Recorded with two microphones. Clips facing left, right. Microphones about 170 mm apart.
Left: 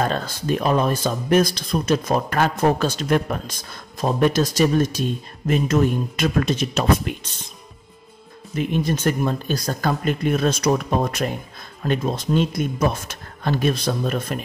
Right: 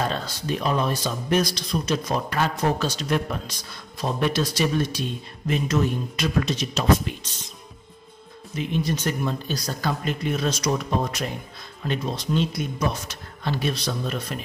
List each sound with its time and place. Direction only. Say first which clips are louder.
0.0 s speech: left 4 dB; 50° left (ahead or behind)
8.5 s speech: left 4 dB; 50° left (ahead or behind)